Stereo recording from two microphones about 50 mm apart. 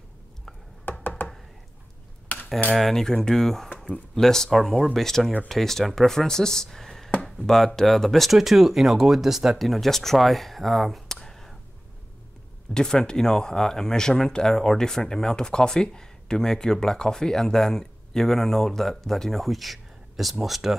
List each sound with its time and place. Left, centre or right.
0.9 s computer keyboard: left
2.7 s speech: centre
12.7 s speech: centre